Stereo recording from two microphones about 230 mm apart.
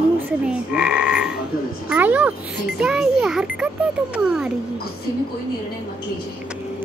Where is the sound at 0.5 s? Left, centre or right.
Centre.